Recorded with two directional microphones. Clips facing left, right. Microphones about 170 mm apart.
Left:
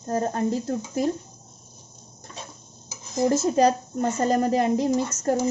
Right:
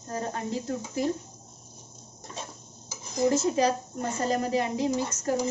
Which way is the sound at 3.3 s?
45° left (ahead or behind).